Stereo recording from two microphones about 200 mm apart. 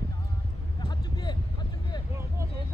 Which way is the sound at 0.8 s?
20° left (ahead or behind).